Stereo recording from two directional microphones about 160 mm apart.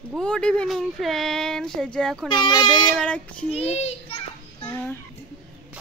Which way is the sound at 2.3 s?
30° left (ahead or behind).